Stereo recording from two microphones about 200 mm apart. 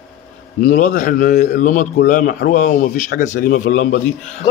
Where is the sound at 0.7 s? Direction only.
40° left (ahead or behind).